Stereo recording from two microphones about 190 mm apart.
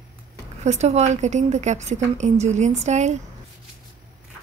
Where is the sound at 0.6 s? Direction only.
35° right (ahead or behind).